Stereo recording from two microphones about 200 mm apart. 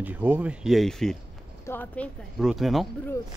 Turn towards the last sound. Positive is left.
turn(degrees=0)  # may be behind; listen again after turning